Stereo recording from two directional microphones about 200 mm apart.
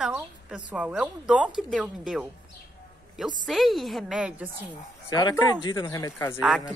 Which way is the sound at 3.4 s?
Centre (ahead or behind).